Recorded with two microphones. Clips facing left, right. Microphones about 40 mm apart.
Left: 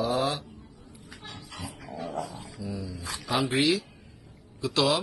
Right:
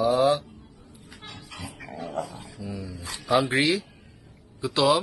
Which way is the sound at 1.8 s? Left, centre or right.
Right.